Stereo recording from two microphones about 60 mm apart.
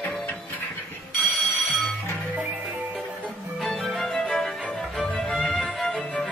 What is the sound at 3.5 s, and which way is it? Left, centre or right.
Music, centre.